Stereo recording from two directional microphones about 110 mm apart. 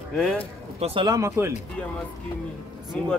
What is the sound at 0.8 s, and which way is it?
Speech, 75° right (ahead or behind).